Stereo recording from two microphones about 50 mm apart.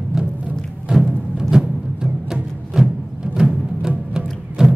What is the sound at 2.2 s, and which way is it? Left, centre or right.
Music, centre.